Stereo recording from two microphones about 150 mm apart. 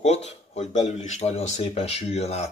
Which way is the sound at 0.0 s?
50° left (ahead or behind).